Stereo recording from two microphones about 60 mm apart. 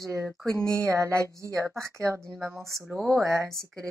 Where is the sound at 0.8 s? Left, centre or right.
Right.